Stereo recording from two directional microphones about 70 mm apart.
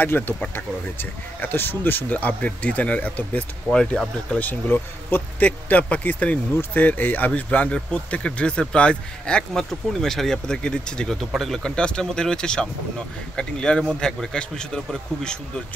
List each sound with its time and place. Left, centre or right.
0.0 s speech: left; by 4.4 s centre
4.4 s speech: left; by 15.6 s centre